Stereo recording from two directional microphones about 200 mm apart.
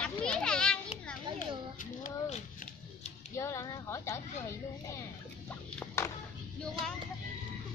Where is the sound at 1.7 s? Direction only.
40° left (ahead or behind).